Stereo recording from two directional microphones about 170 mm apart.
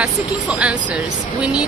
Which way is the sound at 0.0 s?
5° right (ahead or behind).